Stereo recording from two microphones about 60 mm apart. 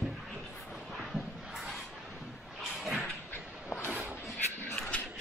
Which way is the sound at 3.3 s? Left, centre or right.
Left.